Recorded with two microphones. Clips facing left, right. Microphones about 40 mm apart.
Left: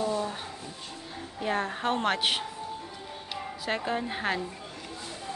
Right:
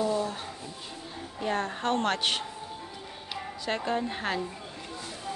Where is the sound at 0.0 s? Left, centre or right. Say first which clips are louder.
Right 1 dB; centre.